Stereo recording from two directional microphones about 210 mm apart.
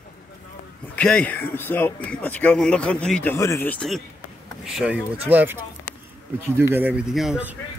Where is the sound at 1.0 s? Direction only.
5° left (ahead or behind).